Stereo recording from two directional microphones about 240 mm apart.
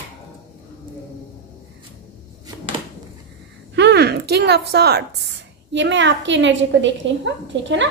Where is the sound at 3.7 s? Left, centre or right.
Right.